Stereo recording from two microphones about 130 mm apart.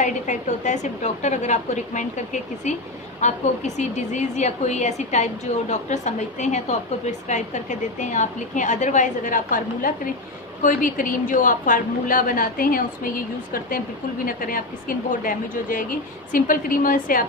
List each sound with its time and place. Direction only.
0.0 s a woman's voice: 70° left (ahead or behind); by 17.3 s 90° left